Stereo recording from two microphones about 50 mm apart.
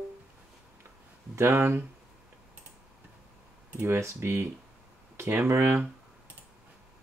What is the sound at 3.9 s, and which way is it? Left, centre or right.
Speech, right.